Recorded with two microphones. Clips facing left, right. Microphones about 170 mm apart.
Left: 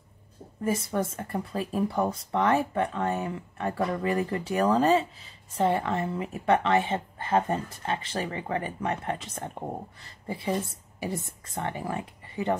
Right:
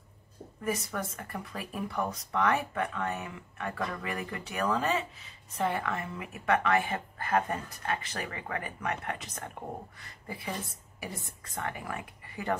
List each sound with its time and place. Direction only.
0.7 s speech: 30° left (ahead or behind)